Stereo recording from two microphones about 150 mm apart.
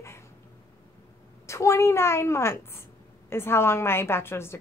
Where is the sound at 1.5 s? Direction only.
20° left (ahead or behind).